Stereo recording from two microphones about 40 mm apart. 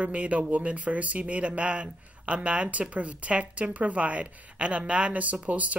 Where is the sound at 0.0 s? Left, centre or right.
Right.